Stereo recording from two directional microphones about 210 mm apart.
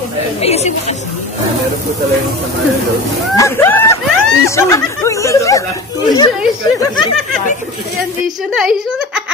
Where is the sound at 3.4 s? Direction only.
10° left (ahead or behind).